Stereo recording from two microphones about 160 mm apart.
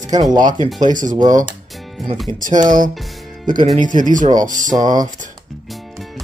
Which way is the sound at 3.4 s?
55° right (ahead or behind).